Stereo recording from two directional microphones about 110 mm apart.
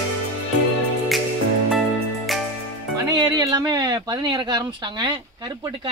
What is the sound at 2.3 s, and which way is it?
Music, centre (ahead or behind).